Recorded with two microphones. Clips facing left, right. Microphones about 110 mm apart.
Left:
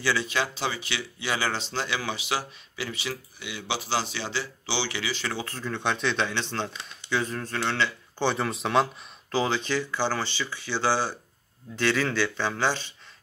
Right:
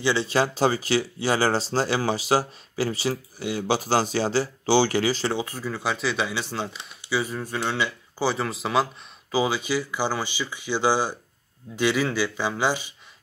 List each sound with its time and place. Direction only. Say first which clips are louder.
0.0 s speech: right 3 dB; 25° right (ahead or behind)
0.3 s speech: right 7 dB; 40° right (ahead or behind)
5.3 s speech: right 4 dB; 15° right (ahead or behind)